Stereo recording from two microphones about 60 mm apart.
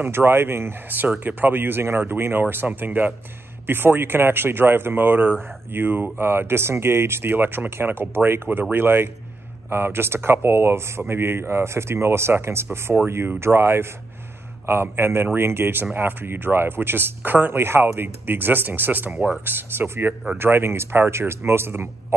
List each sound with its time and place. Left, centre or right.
0.0 s speech: right
19.0 s speech: centre
19.4 s speech: right